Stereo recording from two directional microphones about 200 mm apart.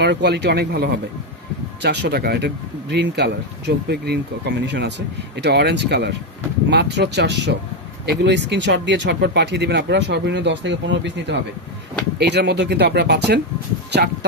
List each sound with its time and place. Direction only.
0.0 s speech: 60° right (ahead or behind)